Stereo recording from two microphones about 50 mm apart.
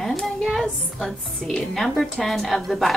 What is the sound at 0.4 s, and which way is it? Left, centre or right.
Music, centre.